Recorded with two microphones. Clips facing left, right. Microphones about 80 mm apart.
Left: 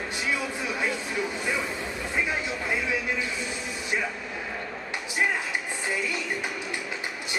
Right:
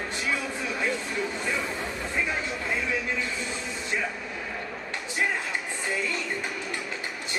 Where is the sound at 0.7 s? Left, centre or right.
Centre.